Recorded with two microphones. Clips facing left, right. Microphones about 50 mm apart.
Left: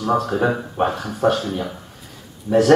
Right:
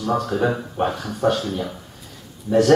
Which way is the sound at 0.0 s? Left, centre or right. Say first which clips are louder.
Left 2 dB; centre.